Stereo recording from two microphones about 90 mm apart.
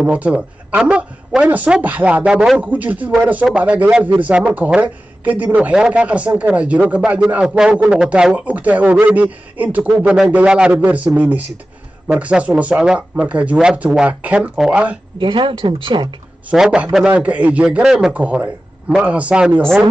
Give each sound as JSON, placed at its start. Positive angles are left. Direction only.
{"t": 0.0, "sound": "speech", "side_deg": -10}
{"t": 15.1, "sound": "speech", "side_deg": -70}
{"t": 16.4, "sound": "speech", "side_deg": -10}